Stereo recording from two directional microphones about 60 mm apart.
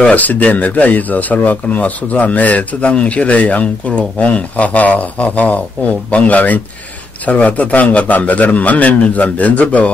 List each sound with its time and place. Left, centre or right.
0.1 s speech: left